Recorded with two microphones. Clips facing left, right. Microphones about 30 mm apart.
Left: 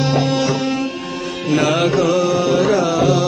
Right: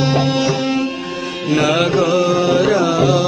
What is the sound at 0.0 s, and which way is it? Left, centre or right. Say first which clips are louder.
Music: right 1 dB; centre.